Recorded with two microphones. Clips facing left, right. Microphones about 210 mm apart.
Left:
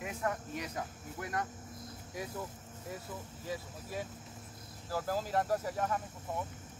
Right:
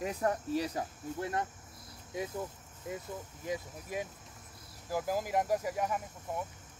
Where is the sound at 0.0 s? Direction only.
35° right (ahead or behind).